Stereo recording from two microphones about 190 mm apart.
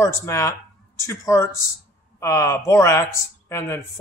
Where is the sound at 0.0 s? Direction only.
15° left (ahead or behind).